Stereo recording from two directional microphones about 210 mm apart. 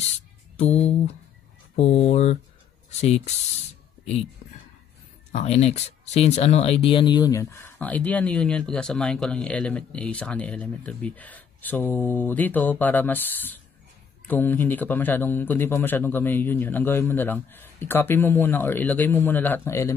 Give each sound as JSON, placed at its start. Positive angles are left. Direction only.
{"t": 0.6, "sound": "music", "side_deg": 30}
{"t": 1.8, "sound": "speech", "side_deg": 30}
{"t": 5.3, "sound": "speech", "side_deg": 30}